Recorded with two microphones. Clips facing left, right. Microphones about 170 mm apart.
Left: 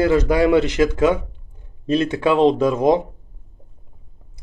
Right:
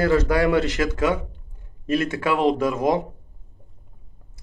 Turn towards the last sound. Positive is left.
turn(degrees=20)  # may be behind; listen again after turning